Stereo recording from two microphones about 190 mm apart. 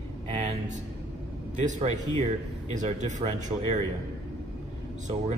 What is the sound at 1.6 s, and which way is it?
Speech, 35° right (ahead or behind).